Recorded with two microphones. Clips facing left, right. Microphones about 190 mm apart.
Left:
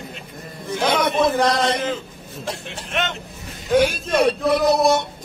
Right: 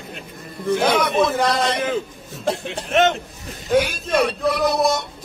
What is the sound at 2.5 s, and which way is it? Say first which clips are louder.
Speech: right 8 dB; 45° right (ahead or behind).